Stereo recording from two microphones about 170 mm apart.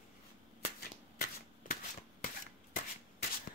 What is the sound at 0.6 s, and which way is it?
Shuffling cards, 55° left (ahead or behind).